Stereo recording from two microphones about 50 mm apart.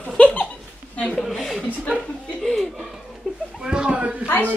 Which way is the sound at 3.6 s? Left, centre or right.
Centre.